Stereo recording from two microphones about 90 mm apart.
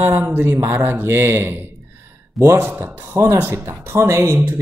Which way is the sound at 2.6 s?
20° right (ahead or behind).